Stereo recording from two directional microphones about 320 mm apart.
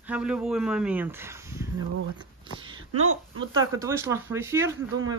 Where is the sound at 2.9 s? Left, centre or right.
Right.